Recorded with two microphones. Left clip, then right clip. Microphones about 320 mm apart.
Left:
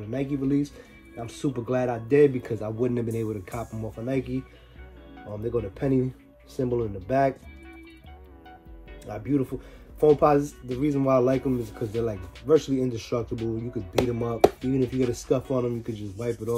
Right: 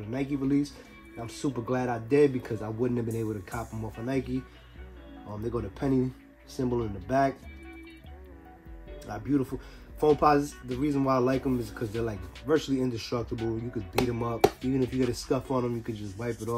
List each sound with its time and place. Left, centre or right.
0.3 s speech: centre
5.4 s speech: centre
9.1 s speech: centre